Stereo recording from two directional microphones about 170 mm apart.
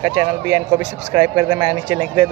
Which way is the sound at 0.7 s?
10° right (ahead or behind).